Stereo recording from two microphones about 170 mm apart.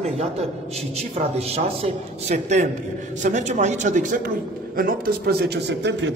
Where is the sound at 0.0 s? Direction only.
40° right (ahead or behind).